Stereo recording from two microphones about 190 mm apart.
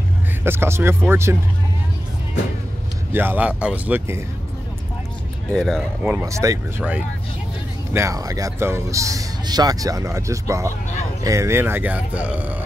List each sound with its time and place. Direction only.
0.4 s a man's voice: 10° right (ahead or behind)
3.1 s a man's voice: 10° right (ahead or behind)
5.5 s speech: centre (ahead or behind)
6.2 s a man's voice: 15° right (ahead or behind)
7.9 s a man's voice: 15° right (ahead or behind)